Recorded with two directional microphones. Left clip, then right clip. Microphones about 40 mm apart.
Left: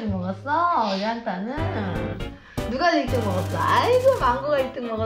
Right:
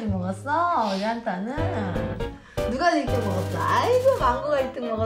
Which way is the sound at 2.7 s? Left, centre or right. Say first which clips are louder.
Left 2 dB; right.